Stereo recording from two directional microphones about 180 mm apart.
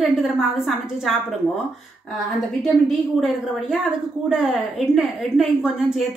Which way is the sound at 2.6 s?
Centre (ahead or behind).